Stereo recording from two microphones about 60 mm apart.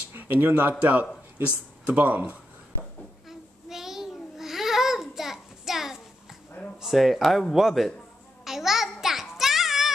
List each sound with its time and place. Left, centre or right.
0.1 s speech: right
3.3 s babbling: centre
6.8 s speech: centre
8.5 s a sound: centre